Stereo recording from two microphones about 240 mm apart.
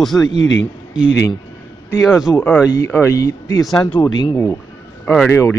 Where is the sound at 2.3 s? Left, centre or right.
Centre.